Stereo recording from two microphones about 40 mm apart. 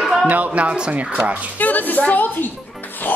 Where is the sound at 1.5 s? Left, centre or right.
Left.